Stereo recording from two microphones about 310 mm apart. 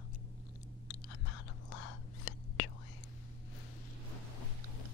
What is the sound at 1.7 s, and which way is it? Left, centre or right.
Whispering, left.